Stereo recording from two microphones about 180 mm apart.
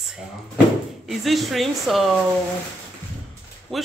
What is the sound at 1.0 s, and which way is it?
Speech, centre (ahead or behind).